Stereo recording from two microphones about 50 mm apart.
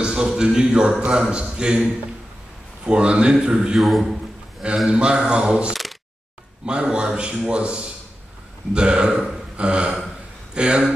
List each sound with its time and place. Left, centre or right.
0.0 s a man's voice: centre
3.8 s a sound: centre
4.8 s a man's voice: centre